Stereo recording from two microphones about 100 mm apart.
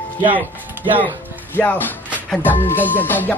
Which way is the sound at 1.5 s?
20° left (ahead or behind).